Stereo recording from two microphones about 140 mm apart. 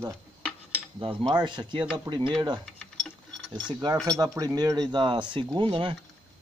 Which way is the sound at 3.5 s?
30° right (ahead or behind).